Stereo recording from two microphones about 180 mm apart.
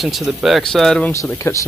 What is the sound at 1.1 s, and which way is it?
Speech, 15° left (ahead or behind).